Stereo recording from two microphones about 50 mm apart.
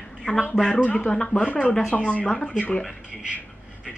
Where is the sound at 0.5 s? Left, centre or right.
Centre.